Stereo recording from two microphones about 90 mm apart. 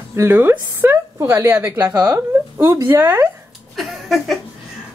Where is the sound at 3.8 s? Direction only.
Centre (ahead or behind).